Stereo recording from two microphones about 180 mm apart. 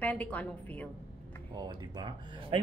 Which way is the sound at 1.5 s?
25° right (ahead or behind).